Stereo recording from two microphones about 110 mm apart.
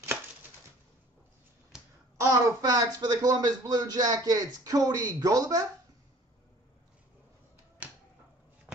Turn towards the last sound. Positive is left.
turn(degrees=-15)  # may be behind; listen again after turning